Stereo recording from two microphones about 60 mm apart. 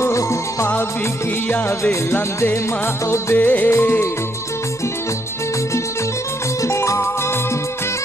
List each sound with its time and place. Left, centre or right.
0.0 s music: left
1.8 s music: left
2.1 s music: left
6.6 s music: left